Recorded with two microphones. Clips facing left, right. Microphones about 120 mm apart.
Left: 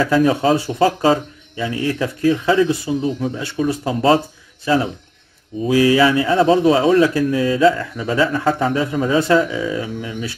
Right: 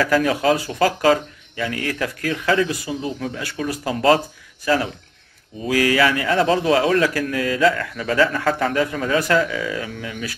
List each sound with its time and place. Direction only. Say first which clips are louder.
0.0 s a man's voice: left 3 dB; 25° left (ahead or behind)
5.7 s a man's voice: left 4 dB; 20° left (ahead or behind)